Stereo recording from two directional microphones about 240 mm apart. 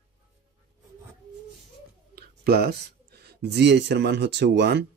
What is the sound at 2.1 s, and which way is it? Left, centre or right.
Speech, right.